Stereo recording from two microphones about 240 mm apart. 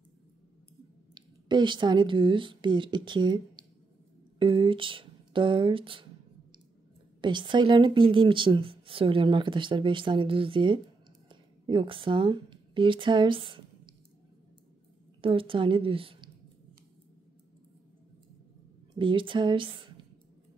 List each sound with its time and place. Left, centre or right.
1.1 s speech: centre
7.2 s a woman's voice: centre
11.2 s a sound: centre
15.2 s a woman's voice: right
18.9 s a woman's voice: right